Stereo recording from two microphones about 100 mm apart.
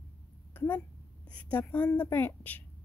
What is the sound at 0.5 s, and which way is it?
A woman's voice, 20° left (ahead or behind).